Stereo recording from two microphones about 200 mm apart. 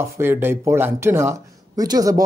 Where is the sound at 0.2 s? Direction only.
10° right (ahead or behind).